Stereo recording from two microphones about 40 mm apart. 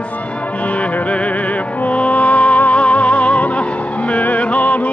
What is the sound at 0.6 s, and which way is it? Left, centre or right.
Music, left.